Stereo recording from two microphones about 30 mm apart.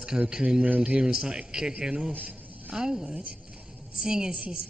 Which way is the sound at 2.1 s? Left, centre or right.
Right.